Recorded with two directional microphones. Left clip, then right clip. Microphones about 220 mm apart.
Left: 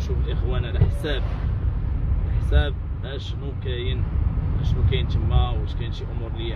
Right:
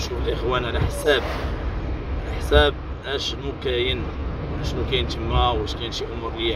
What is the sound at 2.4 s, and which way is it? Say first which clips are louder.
Speech: right 12 dB; 25° right (ahead or behind).